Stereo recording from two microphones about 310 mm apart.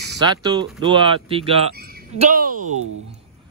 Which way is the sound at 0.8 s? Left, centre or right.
Centre.